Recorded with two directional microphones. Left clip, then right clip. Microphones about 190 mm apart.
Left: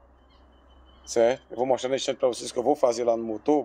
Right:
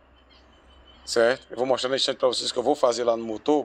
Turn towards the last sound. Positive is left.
turn(degrees=10)  # may be behind; listen again after turning